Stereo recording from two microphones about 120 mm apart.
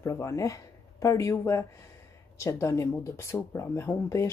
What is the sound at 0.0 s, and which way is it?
Speech, 25° left (ahead or behind).